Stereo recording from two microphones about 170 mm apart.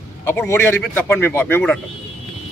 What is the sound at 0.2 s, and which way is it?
Speech, 15° left (ahead or behind).